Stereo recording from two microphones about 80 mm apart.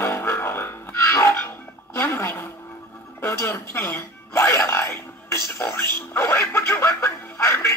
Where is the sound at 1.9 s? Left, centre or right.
Left.